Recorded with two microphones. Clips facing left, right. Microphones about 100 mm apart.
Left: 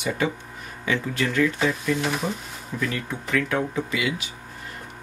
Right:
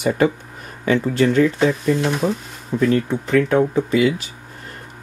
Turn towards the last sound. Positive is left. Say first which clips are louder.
# right 9 dB
turn(degrees=-35)  # may be behind; listen again after turning